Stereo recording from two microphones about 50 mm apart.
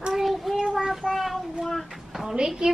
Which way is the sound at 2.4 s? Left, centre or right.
Centre.